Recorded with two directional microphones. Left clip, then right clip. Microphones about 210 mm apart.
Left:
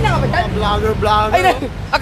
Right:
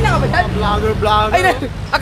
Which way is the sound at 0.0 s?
15° left (ahead or behind).